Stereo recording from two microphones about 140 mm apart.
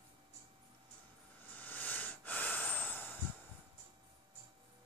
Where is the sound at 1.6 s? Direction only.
15° left (ahead or behind).